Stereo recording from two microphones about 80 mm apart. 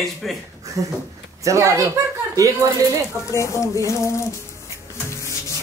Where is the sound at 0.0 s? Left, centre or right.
Centre.